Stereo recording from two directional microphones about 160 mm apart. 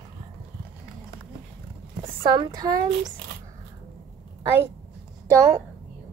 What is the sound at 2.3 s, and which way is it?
Speech, 25° right (ahead or behind).